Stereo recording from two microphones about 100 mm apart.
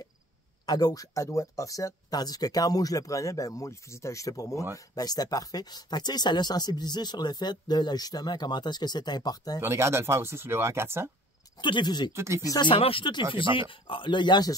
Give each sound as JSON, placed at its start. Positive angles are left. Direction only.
{"t": 0.7, "sound": "speech", "side_deg": 40}
{"t": 9.6, "sound": "speech", "side_deg": -25}
{"t": 11.6, "sound": "speech", "side_deg": 50}
{"t": 12.2, "sound": "speech", "side_deg": -30}
{"t": 12.4, "sound": "speech", "side_deg": 45}
{"t": 12.7, "sound": "speech", "side_deg": 70}
{"t": 13.3, "sound": "speech", "side_deg": 60}